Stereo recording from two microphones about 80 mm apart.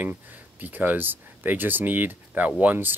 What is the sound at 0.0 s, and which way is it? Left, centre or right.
Speech, right.